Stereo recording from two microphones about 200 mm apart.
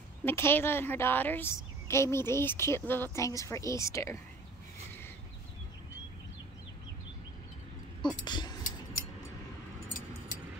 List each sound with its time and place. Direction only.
0.2 s a woman's voice: 10° left (ahead or behind)
8.0 s vehicle: 20° left (ahead or behind)